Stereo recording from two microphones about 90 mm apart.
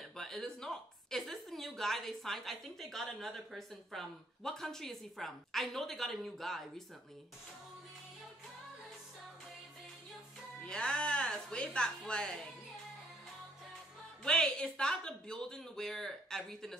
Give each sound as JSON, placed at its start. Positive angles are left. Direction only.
{"t": 0.0, "sound": "a woman's voice", "side_deg": 5}
{"t": 10.6, "sound": "a woman's voice", "side_deg": 10}
{"t": 14.2, "sound": "a woman's voice", "side_deg": 10}